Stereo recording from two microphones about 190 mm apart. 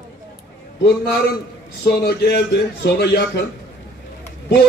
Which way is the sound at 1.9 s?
55° left (ahead or behind).